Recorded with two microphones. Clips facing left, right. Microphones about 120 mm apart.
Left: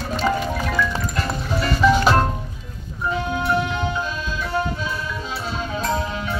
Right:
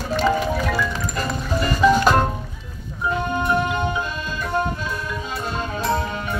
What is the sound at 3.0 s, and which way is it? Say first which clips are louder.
Music: right 1 dB; centre (ahead or behind).